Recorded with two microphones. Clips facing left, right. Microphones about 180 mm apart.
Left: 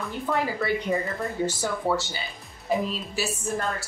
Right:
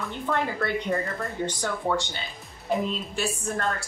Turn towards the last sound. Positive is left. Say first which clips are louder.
# even
turn(degrees=5)  # may be behind; listen again after turning